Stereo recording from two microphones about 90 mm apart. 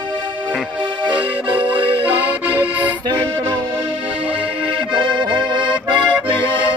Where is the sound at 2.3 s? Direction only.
20° right (ahead or behind).